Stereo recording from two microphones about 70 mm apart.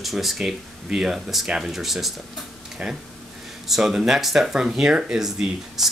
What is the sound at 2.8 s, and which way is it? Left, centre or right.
Speech, centre.